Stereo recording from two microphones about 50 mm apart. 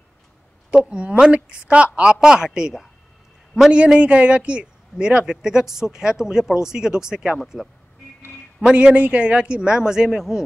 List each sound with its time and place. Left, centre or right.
0.7 s a woman's voice: right; by 7.7 s centre
8.7 s speech: right; by 10.4 s centre